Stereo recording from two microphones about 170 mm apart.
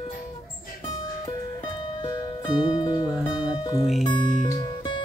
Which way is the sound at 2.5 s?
25° left (ahead or behind).